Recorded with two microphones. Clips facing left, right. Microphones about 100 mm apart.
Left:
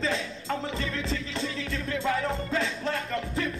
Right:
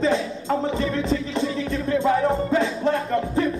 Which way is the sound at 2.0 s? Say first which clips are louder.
Right 8 dB; 30° right (ahead or behind).